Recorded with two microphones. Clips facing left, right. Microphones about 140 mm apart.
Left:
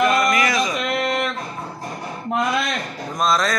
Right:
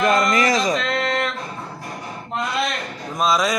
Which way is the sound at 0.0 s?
30° right (ahead or behind).